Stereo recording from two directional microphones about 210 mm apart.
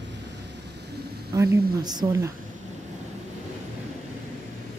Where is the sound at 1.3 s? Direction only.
15° right (ahead or behind).